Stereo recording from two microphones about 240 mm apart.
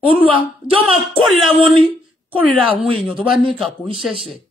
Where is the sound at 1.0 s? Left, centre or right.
Centre.